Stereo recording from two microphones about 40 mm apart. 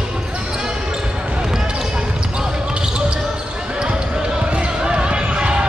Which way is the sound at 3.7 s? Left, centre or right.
Right.